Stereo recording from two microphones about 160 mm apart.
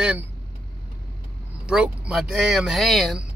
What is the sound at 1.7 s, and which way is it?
Speech, 5° right (ahead or behind).